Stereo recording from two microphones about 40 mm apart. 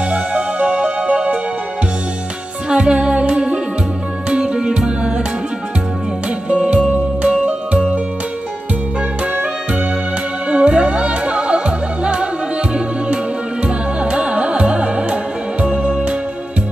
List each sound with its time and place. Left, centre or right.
0.1 s music: right
2.7 s music: right
6.5 s music: right
7.2 s music: right
10.5 s music: right
13.7 s music: right